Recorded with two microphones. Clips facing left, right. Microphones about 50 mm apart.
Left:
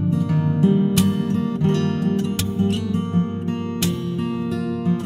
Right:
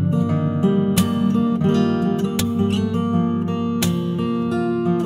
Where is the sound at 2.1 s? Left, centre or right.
Right.